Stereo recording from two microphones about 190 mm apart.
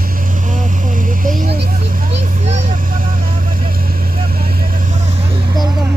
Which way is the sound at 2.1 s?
35° right (ahead or behind).